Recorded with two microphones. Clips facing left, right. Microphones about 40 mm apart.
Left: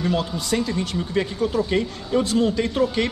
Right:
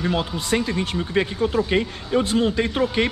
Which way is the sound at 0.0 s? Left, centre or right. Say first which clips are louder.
Even; right.